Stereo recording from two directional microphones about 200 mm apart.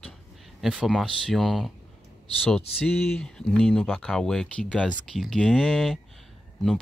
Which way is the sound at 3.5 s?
5° left (ahead or behind).